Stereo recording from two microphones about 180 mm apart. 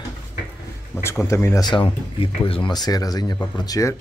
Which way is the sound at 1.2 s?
15° left (ahead or behind).